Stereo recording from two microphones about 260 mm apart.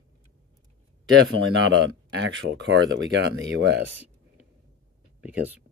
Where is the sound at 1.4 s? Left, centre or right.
Right.